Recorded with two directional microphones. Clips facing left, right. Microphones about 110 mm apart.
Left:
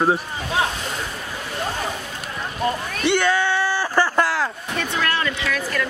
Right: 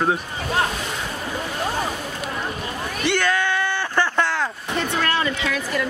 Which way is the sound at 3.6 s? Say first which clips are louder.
Left 2 dB; 5° left (ahead or behind).